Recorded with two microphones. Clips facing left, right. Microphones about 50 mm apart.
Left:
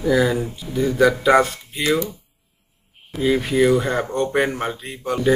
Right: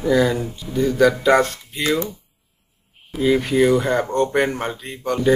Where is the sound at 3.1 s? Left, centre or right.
Centre.